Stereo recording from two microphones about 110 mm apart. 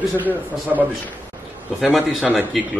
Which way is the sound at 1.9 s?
Centre (ahead or behind).